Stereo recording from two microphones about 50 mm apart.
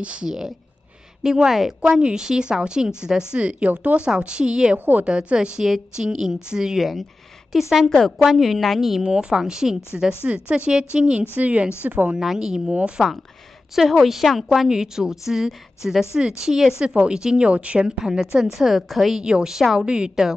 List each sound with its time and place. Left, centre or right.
0.0 s speech: right
1.2 s a woman's voice: centre
4.7 s a woman's voice: right
5.0 s a woman's voice: centre
9.0 s a woman's voice: centre
10.2 s a woman's voice: right
12.2 s a woman's voice: centre
12.7 s speech: right
13.7 s a woman's voice: centre; by 17.8 s right
17.8 s a woman's voice: centre
19.2 s a woman's voice: centre
19.9 s speech: centre